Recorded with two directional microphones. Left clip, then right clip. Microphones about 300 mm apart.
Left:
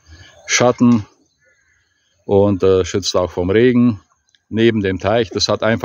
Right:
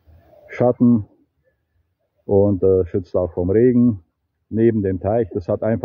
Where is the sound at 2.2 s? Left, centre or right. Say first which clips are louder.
Left 3 dB; left.